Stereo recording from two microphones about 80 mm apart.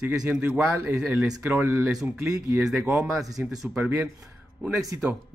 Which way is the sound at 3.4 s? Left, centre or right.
Right.